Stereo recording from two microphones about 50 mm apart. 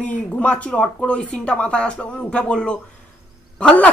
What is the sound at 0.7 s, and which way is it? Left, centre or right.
Speech, centre.